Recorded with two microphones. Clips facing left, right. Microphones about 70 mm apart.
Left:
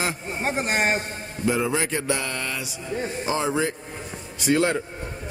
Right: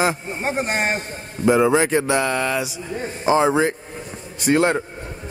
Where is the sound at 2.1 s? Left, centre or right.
Right.